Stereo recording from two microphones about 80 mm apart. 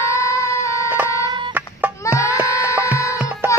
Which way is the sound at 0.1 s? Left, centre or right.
Left.